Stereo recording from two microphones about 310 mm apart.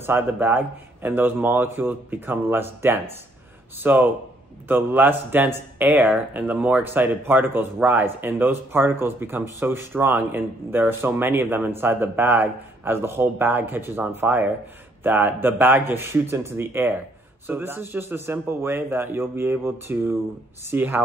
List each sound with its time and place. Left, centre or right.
0.0 s speech: centre